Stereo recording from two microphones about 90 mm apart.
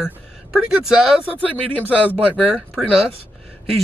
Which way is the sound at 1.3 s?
15° left (ahead or behind).